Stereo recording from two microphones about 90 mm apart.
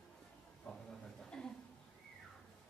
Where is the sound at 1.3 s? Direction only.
5° left (ahead or behind).